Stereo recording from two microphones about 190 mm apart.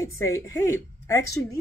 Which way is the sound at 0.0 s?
15° left (ahead or behind).